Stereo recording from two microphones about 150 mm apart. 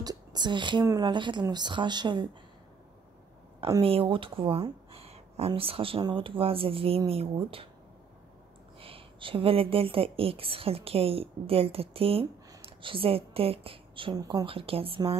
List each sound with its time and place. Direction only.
0.0 s speech: 25° right (ahead or behind)
3.8 s speech: 35° right (ahead or behind)
4.9 s a sound: 45° right (ahead or behind)
5.5 s speech: 40° right (ahead or behind)
8.7 s speech: 35° right (ahead or behind)